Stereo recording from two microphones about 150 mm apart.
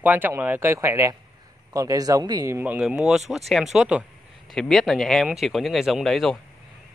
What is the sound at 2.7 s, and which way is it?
Speech, 5° right (ahead or behind).